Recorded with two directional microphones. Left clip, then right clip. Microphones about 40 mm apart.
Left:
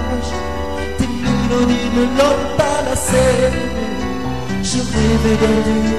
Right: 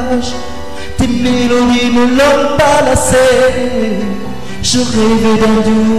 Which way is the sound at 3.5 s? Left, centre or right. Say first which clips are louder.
Right 7 dB; left.